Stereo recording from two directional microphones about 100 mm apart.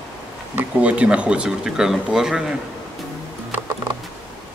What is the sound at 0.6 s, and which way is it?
A man's voice, 15° right (ahead or behind).